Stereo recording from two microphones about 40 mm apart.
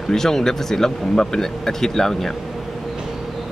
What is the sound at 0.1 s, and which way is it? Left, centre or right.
Speech, centre.